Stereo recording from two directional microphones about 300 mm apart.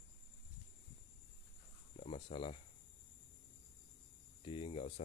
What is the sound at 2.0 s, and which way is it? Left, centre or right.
Cricket, centre.